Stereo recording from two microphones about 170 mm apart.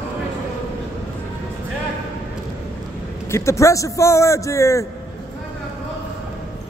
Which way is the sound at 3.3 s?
15° left (ahead or behind).